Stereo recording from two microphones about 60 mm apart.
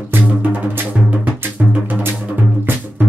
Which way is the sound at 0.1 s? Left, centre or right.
Right.